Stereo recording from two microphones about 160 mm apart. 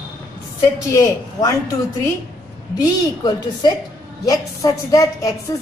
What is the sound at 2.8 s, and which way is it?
A woman's voice, 25° left (ahead or behind).